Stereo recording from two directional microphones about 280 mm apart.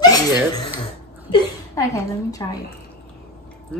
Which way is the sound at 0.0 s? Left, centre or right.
Centre.